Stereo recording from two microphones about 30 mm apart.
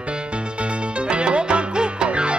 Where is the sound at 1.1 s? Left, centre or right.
Right.